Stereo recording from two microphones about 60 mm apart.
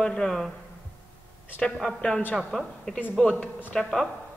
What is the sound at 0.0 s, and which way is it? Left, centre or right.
Speech, centre.